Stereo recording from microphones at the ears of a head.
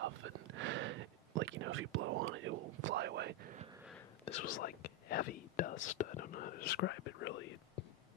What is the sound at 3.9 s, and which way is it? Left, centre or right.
Whispering, left.